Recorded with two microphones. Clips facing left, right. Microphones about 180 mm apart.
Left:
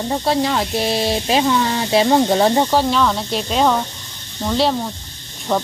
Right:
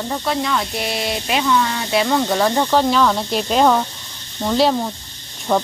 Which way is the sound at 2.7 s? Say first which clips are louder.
Right 1 dB; centre (ahead or behind).